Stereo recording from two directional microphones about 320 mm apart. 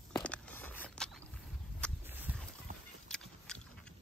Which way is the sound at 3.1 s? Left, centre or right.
Centre.